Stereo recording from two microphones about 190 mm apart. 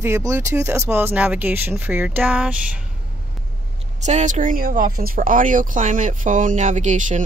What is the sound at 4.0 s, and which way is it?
Speech, 40° right (ahead or behind).